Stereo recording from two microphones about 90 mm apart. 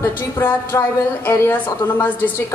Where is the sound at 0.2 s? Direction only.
25° left (ahead or behind).